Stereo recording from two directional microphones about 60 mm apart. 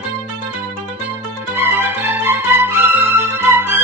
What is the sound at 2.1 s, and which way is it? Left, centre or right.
Music, right.